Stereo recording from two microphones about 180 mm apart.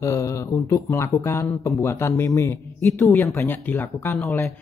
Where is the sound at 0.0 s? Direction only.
15° left (ahead or behind).